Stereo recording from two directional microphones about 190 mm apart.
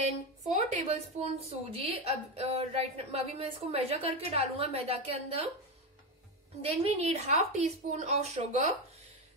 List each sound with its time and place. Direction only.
0.5 s a woman's voice: 35° right (ahead or behind)
6.6 s a woman's voice: 35° right (ahead or behind)